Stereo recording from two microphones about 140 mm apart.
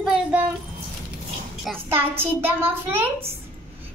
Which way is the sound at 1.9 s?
15° right (ahead or behind).